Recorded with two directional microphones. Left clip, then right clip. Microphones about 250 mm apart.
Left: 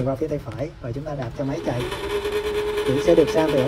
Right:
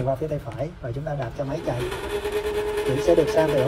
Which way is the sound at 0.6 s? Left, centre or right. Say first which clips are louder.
Left 1 dB; left.